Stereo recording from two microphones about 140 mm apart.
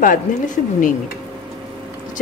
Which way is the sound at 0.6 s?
70° left (ahead or behind).